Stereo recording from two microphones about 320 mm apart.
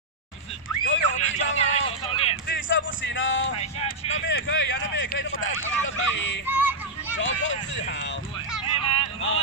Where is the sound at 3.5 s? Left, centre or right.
Centre.